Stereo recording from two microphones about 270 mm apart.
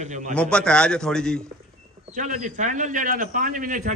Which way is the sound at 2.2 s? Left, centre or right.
Right.